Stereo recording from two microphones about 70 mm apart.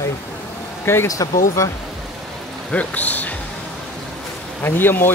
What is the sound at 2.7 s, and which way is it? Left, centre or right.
Speech, left.